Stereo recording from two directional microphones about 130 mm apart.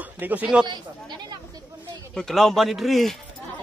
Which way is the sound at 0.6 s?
35° right (ahead or behind).